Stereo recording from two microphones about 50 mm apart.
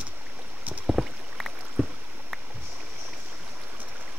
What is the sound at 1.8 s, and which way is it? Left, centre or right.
Rowboat, right.